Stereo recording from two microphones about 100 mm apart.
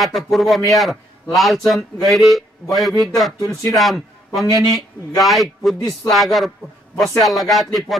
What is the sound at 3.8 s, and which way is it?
A man's voice, centre (ahead or behind).